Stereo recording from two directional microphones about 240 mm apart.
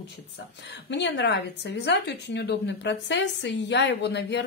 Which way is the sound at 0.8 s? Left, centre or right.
Left.